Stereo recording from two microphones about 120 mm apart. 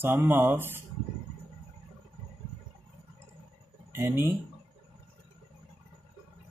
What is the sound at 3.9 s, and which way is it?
Speech, 20° right (ahead or behind).